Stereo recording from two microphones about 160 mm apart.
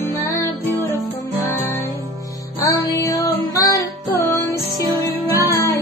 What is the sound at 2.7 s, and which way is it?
Music, 20° left (ahead or behind).